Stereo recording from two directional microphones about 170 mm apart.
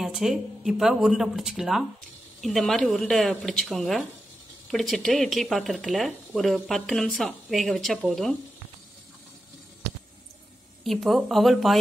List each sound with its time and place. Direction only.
0.0 s speech: centre (ahead or behind)
10.8 s speech: centre (ahead or behind)